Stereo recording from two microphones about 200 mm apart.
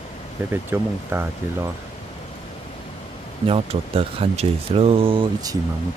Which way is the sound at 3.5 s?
30° right (ahead or behind).